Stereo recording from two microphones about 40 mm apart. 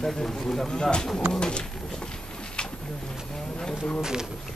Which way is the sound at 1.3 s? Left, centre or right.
Left.